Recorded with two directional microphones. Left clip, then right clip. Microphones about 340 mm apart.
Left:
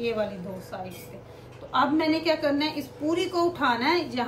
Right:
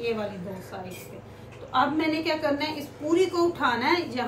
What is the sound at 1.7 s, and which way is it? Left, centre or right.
A woman's voice, centre.